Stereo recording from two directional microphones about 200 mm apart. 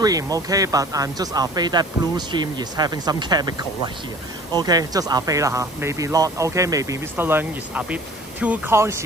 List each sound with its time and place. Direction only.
0.0 s speech: 20° right (ahead or behind)